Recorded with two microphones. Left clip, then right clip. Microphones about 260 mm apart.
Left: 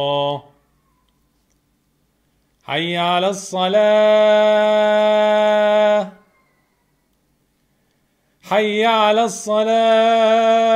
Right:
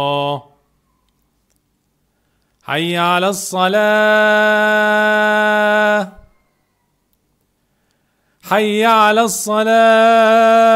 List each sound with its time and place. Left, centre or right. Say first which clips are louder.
0.0 s speech: right 2 dB; right
2.6 s mantra: right 3 dB; right
8.4 s mantra: right 2 dB; right